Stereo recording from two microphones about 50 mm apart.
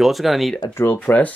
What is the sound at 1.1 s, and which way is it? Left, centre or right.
Speech, left.